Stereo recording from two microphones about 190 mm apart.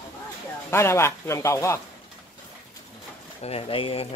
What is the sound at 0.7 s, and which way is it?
Speech, 15° left (ahead or behind).